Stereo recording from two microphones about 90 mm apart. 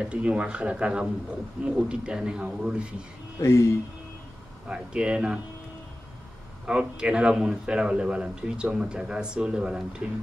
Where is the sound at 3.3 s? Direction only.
35° left (ahead or behind).